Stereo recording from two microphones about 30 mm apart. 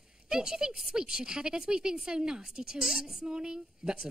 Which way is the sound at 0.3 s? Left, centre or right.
Right.